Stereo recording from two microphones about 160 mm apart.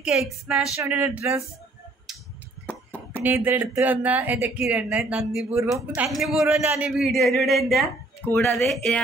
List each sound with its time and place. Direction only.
0.0 s a woman's voice: 5° right (ahead or behind)
2.6 s a sound: 10° left (ahead or behind)
3.2 s a woman's voice: 10° right (ahead or behind)
6.6 s speech: 15° right (ahead or behind)
7.0 s a woman's voice: centre (ahead or behind)